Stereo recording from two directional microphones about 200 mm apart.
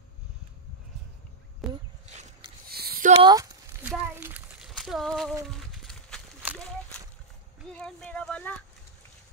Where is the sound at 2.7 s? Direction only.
50° right (ahead or behind).